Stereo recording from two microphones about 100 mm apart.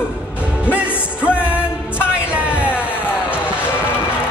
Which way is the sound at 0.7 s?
15° right (ahead or behind).